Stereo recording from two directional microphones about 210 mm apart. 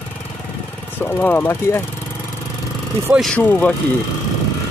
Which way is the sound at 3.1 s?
5° left (ahead or behind).